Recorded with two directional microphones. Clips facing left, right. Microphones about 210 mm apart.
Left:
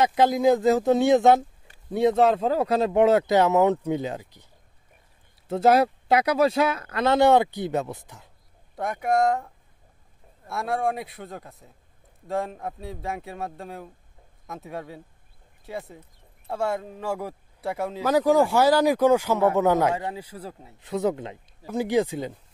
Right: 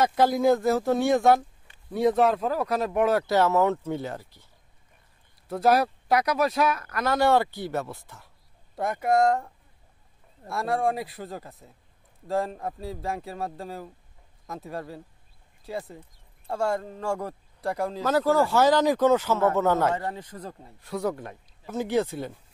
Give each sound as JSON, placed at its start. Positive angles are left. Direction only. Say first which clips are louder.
{"t": 0.0, "sound": "speech", "louder": "left 2 dB", "side_deg": 15}
{"t": 5.5, "sound": "speech", "louder": "left 3 dB", "side_deg": 25}
{"t": 8.7, "sound": "speech", "louder": "even", "side_deg": 0}
{"t": 10.5, "sound": "speech", "louder": "even", "side_deg": 0}
{"t": 20.8, "sound": "speech", "louder": "left 4 dB", "side_deg": 20}